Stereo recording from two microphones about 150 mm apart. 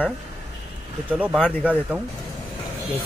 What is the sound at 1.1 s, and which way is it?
Speech, 5° right (ahead or behind).